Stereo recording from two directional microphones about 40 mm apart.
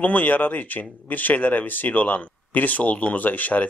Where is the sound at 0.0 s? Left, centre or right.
Left.